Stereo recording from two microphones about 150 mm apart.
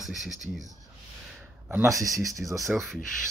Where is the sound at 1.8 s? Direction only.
20° right (ahead or behind).